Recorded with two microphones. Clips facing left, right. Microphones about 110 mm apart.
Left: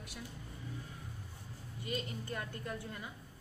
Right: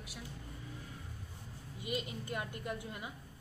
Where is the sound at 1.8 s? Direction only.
15° right (ahead or behind).